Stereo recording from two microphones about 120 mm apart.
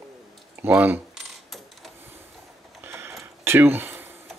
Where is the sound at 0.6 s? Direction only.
15° right (ahead or behind).